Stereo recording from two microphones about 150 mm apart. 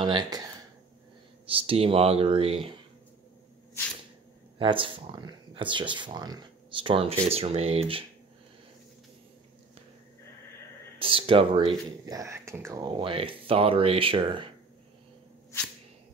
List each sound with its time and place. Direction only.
0.0 s speech: 30° right (ahead or behind)
1.5 s speech: 40° right (ahead or behind)
4.6 s speech: 35° right (ahead or behind)
11.0 s speech: 35° right (ahead or behind)